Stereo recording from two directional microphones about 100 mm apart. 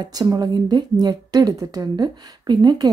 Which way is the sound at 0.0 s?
40° right (ahead or behind).